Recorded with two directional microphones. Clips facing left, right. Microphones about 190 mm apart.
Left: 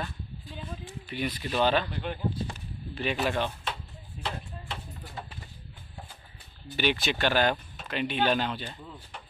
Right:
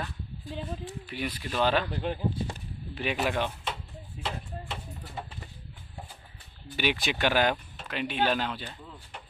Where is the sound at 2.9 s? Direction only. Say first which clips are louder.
Even; 10° right (ahead or behind).